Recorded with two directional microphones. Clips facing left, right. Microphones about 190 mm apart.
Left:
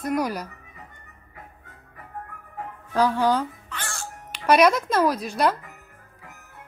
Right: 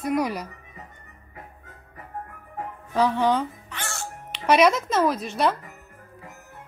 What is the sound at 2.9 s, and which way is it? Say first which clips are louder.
Speech: even; 5° left (ahead or behind).